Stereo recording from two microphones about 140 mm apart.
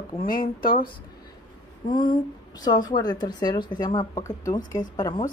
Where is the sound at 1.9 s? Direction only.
35° left (ahead or behind).